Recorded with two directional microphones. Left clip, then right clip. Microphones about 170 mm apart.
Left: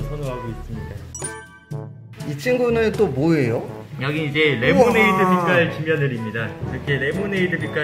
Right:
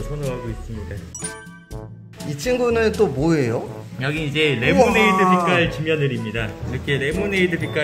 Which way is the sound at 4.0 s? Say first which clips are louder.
Left 1 dB; 25° right (ahead or behind).